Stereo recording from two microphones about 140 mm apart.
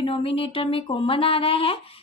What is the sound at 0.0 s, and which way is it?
Speech, 45° left (ahead or behind).